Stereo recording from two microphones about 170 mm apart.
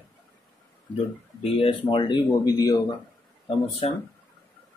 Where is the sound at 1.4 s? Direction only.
35° left (ahead or behind).